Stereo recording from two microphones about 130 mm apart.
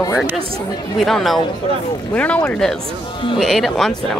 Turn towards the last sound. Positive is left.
turn(degrees=0)  # may be behind; listen again after turning